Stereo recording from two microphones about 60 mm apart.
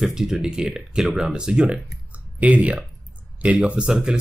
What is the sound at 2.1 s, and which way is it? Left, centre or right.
Clicking, right.